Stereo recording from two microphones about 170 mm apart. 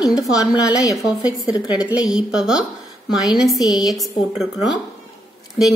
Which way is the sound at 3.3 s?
Centre (ahead or behind).